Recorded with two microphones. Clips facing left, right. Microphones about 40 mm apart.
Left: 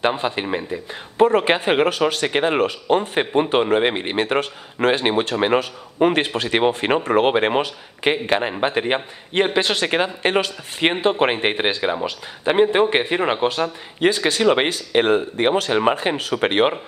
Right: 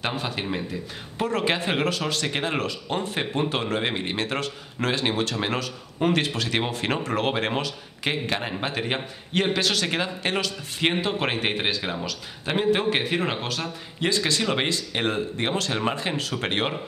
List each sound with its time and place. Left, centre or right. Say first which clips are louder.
0.0 s a man's voice: left 7 dB; left